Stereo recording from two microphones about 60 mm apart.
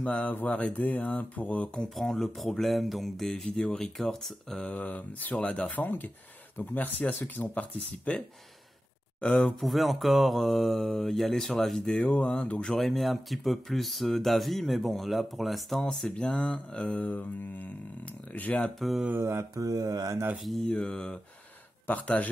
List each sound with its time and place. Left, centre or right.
0.0 s speech: left
1.8 s speech: centre
4.8 s speech: left
5.9 s speech: left
9.2 s speech: centre
9.6 s speech: centre
12.7 s speech: centre; by 18.7 s left
18.8 s speech: centre
19.5 s speech: right
20.6 s speech: centre